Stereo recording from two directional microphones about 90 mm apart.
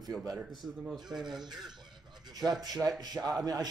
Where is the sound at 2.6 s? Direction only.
50° right (ahead or behind).